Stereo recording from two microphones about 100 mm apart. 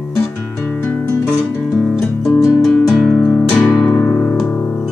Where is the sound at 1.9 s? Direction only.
5° left (ahead or behind).